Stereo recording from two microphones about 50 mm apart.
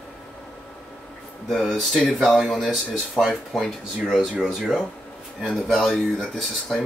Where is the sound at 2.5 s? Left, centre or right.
Centre.